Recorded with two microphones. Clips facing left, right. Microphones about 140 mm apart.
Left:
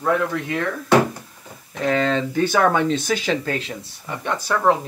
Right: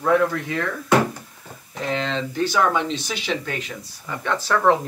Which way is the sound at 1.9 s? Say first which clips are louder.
Left 5 dB; 50° left (ahead or behind).